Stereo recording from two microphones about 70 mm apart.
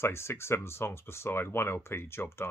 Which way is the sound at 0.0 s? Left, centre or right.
Left.